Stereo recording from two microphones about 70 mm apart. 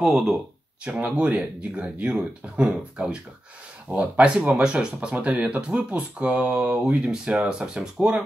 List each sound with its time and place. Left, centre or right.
0.8 s speech: centre